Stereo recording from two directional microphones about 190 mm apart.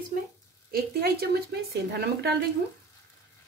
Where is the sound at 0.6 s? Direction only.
55° right (ahead or behind).